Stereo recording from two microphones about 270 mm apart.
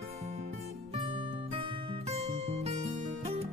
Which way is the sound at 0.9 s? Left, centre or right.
Centre.